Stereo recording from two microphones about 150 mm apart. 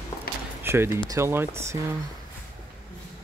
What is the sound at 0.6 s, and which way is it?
Speech, 15° right (ahead or behind).